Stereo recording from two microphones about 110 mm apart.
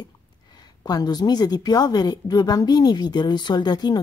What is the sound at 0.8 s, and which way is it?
A woman's voice, 35° left (ahead or behind).